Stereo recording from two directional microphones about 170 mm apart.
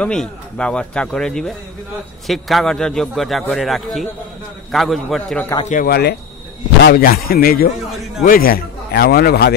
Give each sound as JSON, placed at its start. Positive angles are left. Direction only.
{"t": 0.0, "sound": "a man's voice", "side_deg": 5}
{"t": 5.7, "sound": "a man's voice", "side_deg": 60}